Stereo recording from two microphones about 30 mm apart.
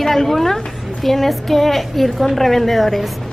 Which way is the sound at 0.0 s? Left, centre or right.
Centre.